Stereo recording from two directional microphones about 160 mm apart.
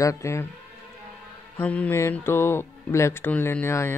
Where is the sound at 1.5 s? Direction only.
10° left (ahead or behind).